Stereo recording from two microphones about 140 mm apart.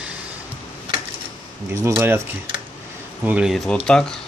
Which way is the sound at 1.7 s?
20° right (ahead or behind).